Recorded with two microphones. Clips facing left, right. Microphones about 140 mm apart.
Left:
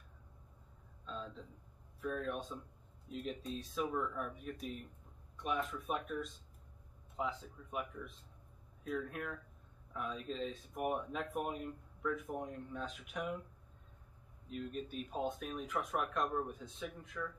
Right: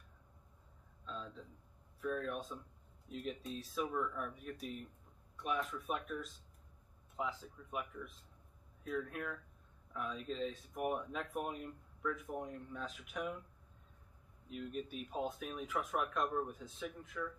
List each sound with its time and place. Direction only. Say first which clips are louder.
1.0 s a sound: left 2 dB; centre (ahead or behind)
2.0 s speech: even; centre (ahead or behind)
7.2 s speech: left 1 dB; centre (ahead or behind)
14.5 s speech: left 1 dB; 5° right (ahead or behind)